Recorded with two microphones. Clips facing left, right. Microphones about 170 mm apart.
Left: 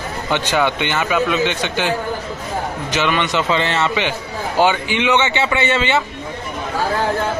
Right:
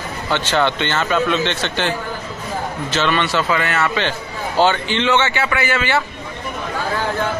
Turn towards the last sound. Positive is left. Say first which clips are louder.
# left 2 dB
turn(degrees=20)  # may be behind; listen again after turning